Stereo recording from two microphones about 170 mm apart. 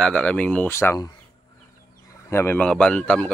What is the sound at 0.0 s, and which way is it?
Speech, 5° left (ahead or behind).